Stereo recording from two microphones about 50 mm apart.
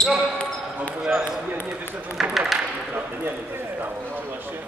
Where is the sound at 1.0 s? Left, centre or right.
Centre.